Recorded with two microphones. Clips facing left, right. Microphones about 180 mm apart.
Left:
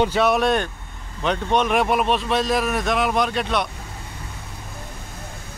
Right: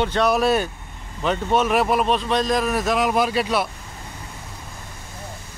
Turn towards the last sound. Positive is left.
turn(degrees=-5)  # may be behind; listen again after turning